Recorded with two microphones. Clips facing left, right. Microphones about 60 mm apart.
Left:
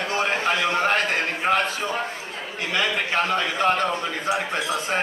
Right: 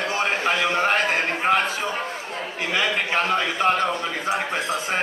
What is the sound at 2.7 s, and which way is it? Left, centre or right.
A man's voice, centre.